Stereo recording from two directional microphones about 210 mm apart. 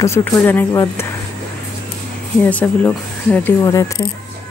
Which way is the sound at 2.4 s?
5° left (ahead or behind).